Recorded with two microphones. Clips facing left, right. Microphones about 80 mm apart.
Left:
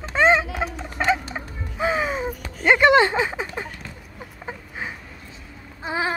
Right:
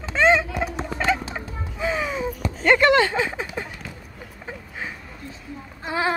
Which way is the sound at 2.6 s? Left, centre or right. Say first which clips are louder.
Left 1 dB; centre.